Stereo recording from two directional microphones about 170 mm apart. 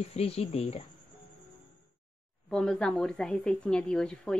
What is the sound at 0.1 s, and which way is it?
Speech, 35° left (ahead or behind).